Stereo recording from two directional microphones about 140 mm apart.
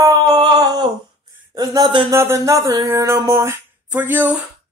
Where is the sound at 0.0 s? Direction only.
25° right (ahead or behind).